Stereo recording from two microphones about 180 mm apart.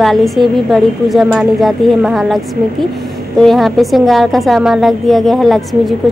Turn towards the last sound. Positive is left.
turn(degrees=0)  # may be behind; listen again after turning